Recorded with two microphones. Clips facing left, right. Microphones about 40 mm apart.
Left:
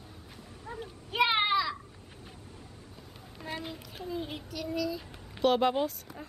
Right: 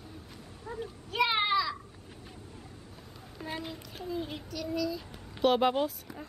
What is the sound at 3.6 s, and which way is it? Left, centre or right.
Speech, centre.